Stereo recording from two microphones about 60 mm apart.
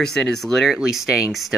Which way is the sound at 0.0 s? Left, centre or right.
Centre.